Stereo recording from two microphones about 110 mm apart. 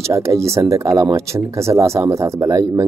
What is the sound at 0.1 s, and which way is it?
Speech, 25° right (ahead or behind).